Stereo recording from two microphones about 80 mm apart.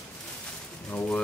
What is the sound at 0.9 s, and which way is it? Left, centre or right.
Speech, left.